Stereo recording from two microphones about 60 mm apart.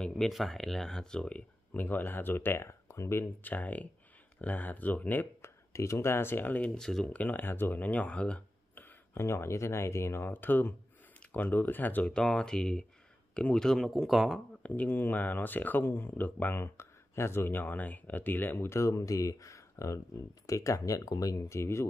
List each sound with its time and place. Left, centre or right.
0.3 s speech: centre; by 3.3 s left
3.4 s speech: left
5.4 s speech: left
6.7 s speech: centre
7.1 s speech: left
7.8 s speech: left
9.1 s speech: left
10.3 s speech: left
12.1 s speech: centre
13.7 s speech: centre
14.6 s speech: left
18.7 s speech: left